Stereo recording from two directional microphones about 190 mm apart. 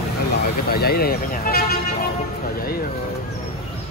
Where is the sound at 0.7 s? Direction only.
55° left (ahead or behind).